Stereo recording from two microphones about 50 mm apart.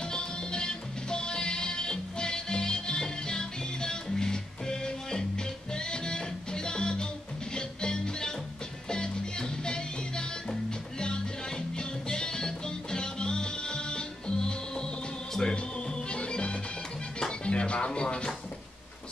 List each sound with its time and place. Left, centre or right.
0.0 s music: centre